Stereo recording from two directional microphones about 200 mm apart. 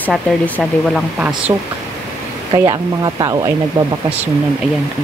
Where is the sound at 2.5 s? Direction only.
20° right (ahead or behind).